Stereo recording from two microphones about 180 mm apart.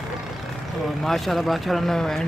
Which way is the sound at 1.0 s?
Centre (ahead or behind).